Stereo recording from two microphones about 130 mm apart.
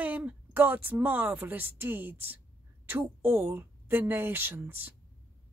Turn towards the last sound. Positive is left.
turn(degrees=-15)  # may be behind; listen again after turning